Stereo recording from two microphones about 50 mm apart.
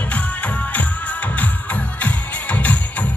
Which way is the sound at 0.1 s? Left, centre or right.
Left.